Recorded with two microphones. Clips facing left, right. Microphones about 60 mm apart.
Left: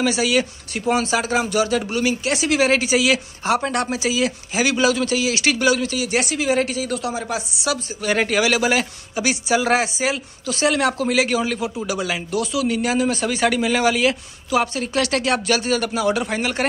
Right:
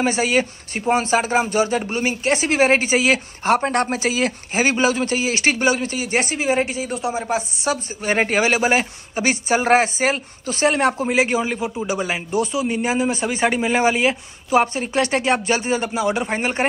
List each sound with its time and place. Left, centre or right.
0.0 s speech: right